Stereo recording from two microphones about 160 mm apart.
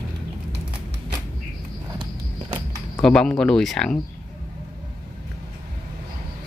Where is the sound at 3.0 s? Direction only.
5° left (ahead or behind).